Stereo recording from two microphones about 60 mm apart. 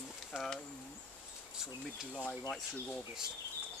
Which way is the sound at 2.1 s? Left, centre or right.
Centre.